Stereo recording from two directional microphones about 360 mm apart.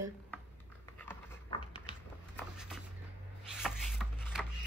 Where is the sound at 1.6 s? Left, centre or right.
Centre.